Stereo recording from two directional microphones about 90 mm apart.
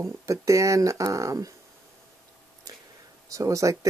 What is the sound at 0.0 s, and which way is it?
Speech, 35° right (ahead or behind).